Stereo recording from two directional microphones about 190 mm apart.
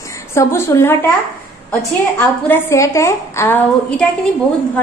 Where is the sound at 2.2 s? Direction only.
10° left (ahead or behind).